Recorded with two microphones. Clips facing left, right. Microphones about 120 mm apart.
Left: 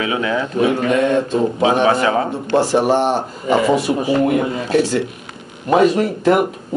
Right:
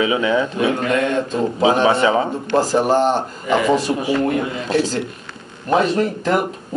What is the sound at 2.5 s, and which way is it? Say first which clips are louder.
Speech: left 1 dB; centre (ahead or behind).